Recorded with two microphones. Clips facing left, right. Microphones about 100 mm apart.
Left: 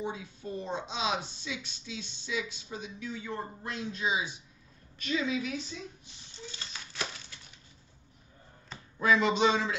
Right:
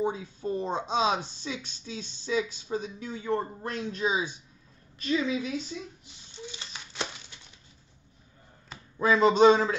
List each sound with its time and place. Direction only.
0.0 s a woman's voice: 40° right (ahead or behind)
6.5 s a sound: 20° right (ahead or behind)
9.0 s a woman's voice: 35° right (ahead or behind)